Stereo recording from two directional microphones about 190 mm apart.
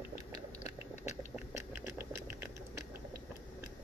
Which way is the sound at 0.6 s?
35° left (ahead or behind).